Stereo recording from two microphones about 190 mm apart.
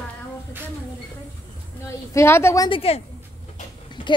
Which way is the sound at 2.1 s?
15° left (ahead or behind).